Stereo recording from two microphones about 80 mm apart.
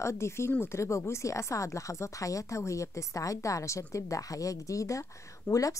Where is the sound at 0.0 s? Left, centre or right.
Left.